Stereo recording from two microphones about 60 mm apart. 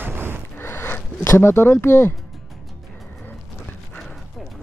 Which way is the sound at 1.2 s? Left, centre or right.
Left.